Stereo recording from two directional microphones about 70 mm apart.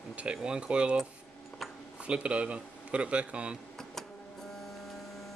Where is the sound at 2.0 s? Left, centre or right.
Centre.